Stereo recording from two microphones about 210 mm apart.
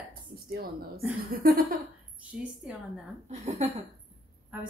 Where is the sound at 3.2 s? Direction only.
35° right (ahead or behind).